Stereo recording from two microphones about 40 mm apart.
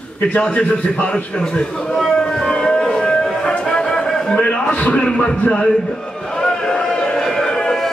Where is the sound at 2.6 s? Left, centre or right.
Left.